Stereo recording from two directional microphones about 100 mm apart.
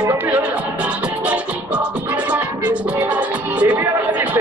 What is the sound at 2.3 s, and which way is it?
Music, 15° right (ahead or behind).